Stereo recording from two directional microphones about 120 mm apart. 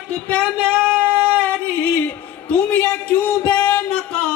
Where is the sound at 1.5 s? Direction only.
10° left (ahead or behind).